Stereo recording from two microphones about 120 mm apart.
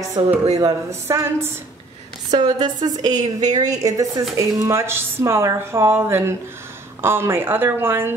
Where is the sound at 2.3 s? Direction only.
35° right (ahead or behind).